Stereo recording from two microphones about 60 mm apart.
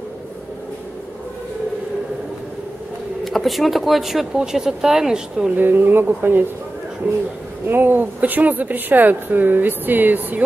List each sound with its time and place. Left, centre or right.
3.3 s speech: centre
5.6 s a woman's voice: right
7.0 s speech: right
7.6 s a woman's voice: right